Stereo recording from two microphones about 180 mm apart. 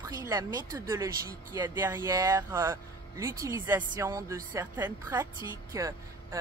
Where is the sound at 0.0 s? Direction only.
20° right (ahead or behind).